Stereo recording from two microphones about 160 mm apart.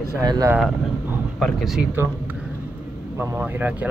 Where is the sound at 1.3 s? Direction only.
Centre (ahead or behind).